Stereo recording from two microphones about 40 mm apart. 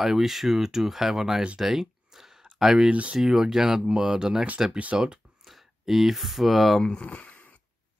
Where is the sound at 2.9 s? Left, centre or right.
Right.